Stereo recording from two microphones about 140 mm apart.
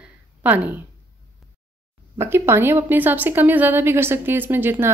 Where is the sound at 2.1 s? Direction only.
15° right (ahead or behind).